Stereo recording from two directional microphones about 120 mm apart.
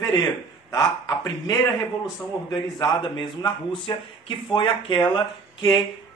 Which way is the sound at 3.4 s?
45° left (ahead or behind).